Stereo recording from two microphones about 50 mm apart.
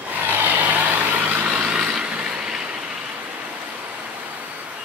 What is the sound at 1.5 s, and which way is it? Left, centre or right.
Vehicle, right.